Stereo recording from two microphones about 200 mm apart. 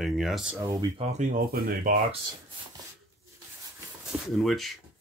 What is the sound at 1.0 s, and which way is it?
Speech, 35° right (ahead or behind).